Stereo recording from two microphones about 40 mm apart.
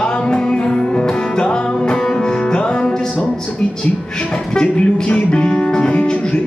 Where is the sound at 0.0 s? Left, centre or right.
Left.